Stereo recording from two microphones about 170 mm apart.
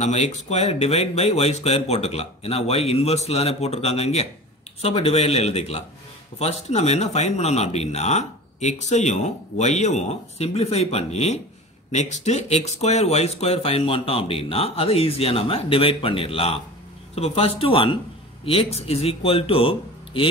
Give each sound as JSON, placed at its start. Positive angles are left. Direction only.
{"t": 0.0, "sound": "speech", "side_deg": 40}